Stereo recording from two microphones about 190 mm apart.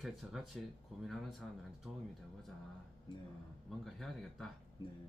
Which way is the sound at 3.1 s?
25° left (ahead or behind).